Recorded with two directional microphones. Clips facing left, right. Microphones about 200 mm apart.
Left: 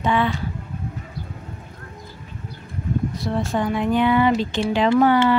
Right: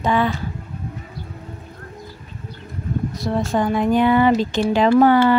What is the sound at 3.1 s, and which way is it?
A woman's voice, 40° right (ahead or behind).